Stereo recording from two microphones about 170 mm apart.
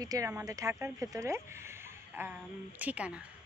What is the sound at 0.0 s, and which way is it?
Speech, 20° right (ahead or behind).